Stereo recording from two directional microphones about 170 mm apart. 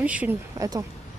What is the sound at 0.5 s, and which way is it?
Speech, 20° right (ahead or behind).